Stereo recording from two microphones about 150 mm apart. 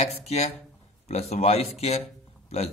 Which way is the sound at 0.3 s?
45° left (ahead or behind).